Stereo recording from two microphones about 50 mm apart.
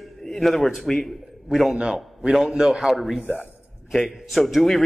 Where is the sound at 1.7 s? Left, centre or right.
Centre.